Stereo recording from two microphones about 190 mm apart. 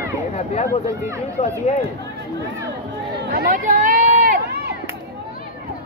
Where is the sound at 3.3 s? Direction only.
45° right (ahead or behind).